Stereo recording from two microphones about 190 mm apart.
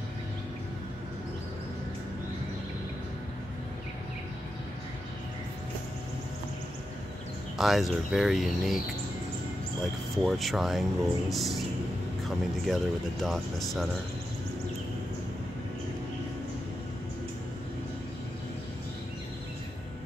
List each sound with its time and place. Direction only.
7.5 s speech: centre (ahead or behind)
10.1 s speech: centre (ahead or behind)
12.6 s speech: centre (ahead or behind)